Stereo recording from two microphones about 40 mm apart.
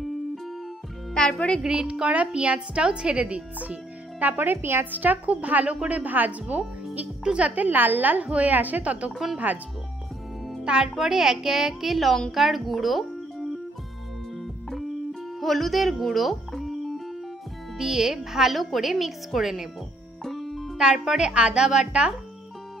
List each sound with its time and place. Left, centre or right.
1.1 s speech: centre
1.6 s a woman's voice: right
4.2 s speech: right
4.9 s a woman's voice: right
7.3 s a woman's voice: right
7.6 s a woman's voice: right
10.6 s a child's voice: right
11.0 s a woman's voice: centre
15.4 s speech: centre
17.7 s a woman's voice: centre
20.2 s music: centre
20.7 s speech: centre
21.2 s a woman's voice: right